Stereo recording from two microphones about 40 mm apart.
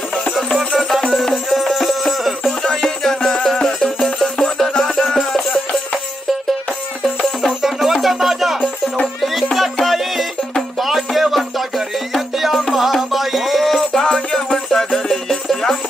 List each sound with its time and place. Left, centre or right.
0.6 s music: centre
2.6 s music: centre
7.6 s music: centre
13.9 s music: centre
14.5 s music: centre